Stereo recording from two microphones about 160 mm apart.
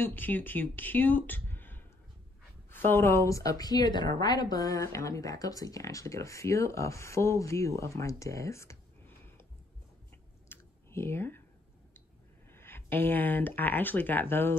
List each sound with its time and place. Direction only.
0.0 s a woman's voice: 10° left (ahead or behind)
10.5 s computer keyboard: 15° left (ahead or behind)
12.4 s speech: 15° left (ahead or behind)